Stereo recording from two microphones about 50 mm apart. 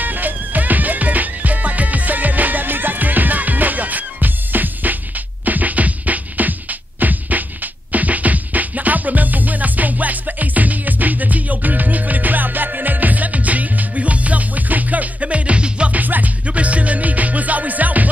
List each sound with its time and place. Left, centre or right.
0.0 s music: right
16.0 s music: right